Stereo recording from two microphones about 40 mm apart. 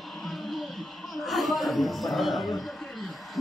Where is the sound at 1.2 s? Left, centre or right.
Centre.